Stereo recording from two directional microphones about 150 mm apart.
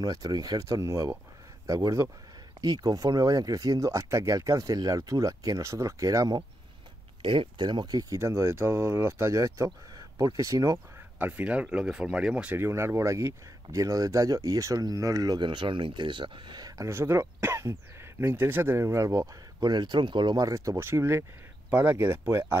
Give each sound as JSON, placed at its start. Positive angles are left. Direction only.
{"t": 0.0, "sound": "speech", "side_deg": -25}